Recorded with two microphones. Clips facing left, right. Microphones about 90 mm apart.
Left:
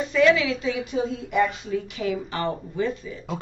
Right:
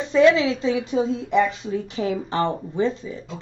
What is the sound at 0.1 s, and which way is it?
Speech, 30° right (ahead or behind).